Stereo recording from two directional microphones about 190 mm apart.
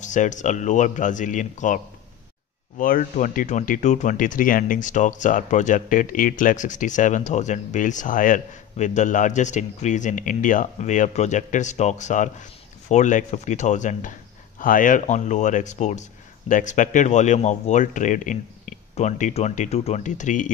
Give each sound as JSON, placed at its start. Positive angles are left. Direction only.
{"t": 0.0, "sound": "speech", "side_deg": 40}
{"t": 2.8, "sound": "speech", "side_deg": 45}